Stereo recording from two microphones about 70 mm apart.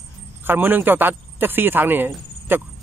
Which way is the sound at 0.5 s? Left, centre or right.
Right.